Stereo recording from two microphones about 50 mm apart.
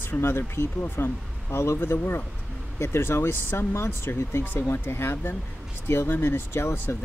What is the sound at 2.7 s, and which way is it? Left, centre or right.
Speech, left.